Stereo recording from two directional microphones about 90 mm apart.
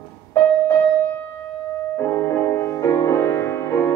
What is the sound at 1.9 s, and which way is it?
Music, 25° left (ahead or behind).